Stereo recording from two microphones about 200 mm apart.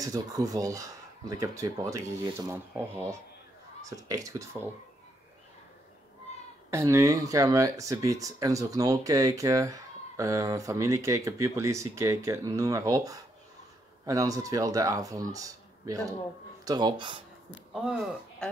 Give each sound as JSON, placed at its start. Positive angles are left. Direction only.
{"t": 0.0, "sound": "speech", "side_deg": -15}
{"t": 6.7, "sound": "speech", "side_deg": -15}